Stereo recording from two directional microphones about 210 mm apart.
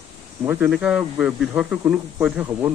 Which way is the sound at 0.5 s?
5° right (ahead or behind).